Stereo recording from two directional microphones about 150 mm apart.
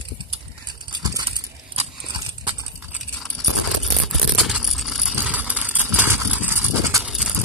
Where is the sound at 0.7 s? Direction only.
30° right (ahead or behind).